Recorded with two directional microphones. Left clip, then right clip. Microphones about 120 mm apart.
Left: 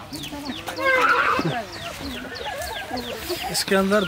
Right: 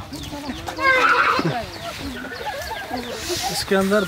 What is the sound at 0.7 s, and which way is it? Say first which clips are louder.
Neigh: right 2 dB; 30° right (ahead or behind).